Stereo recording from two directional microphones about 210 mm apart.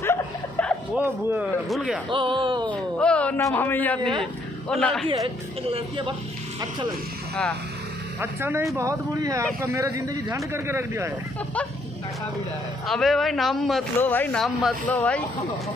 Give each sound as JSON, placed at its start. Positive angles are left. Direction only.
{"t": 0.0, "sound": "a sound", "side_deg": 10}
{"t": 0.9, "sound": "speech", "side_deg": -10}
{"t": 2.0, "sound": "speech", "side_deg": -20}
{"t": 2.7, "sound": "speech", "side_deg": 5}
{"t": 5.0, "sound": "speech", "side_deg": -25}
{"t": 8.2, "sound": "speech", "side_deg": -10}
{"t": 12.8, "sound": "speech", "side_deg": 0}